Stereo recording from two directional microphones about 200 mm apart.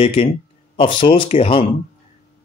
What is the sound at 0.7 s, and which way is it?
Speech, 25° left (ahead or behind).